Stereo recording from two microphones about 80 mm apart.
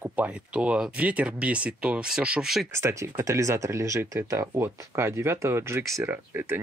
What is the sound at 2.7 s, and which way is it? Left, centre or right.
Speech, right.